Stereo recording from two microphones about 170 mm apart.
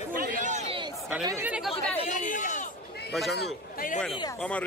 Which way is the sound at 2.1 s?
50° left (ahead or behind).